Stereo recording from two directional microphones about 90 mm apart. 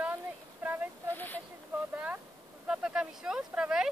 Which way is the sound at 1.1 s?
20° left (ahead or behind).